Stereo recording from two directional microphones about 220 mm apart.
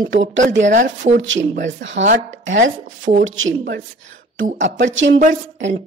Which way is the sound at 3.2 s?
60° right (ahead or behind).